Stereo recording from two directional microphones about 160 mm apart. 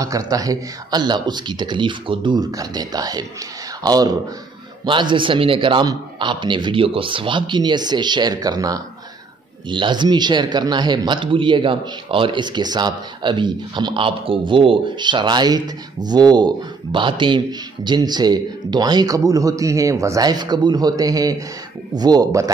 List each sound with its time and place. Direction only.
0.0 s a man's voice: 20° right (ahead or behind)